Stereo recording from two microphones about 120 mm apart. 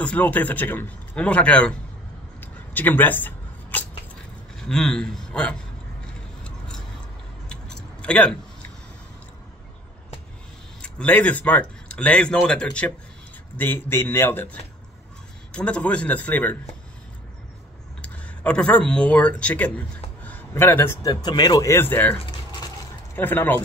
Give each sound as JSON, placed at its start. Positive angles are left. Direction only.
{"t": 0.0, "sound": "a man's voice", "side_deg": 10}
{"t": 2.4, "sound": "a sound", "side_deg": 15}
{"t": 4.6, "sound": "speech", "side_deg": 5}
{"t": 7.4, "sound": "a sound", "side_deg": 5}
{"t": 10.8, "sound": "a man's voice", "side_deg": 10}
{"t": 18.0, "sound": "speech", "side_deg": 10}
{"t": 23.1, "sound": "a man's voice", "side_deg": 15}